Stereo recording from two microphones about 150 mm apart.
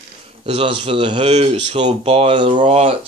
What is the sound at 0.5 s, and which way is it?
Speech, 40° right (ahead or behind).